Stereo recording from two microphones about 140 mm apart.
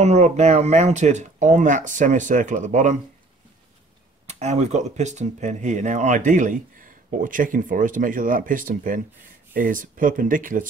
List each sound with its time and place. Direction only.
0.0 s speech: 55° right (ahead or behind)
4.3 s speech: 55° right (ahead or behind); by 10.7 s 70° right (ahead or behind)